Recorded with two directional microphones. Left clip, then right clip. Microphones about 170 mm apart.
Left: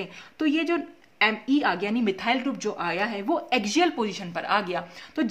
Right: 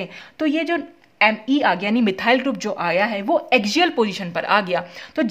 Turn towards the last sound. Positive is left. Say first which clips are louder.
# right 7 dB
turn(degrees=-45)  # may be behind; listen again after turning